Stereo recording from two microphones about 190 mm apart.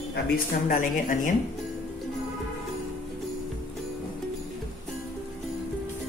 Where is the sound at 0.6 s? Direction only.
45° left (ahead or behind).